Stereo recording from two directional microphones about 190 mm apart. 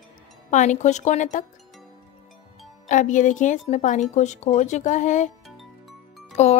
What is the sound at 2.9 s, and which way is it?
Speech, 40° left (ahead or behind).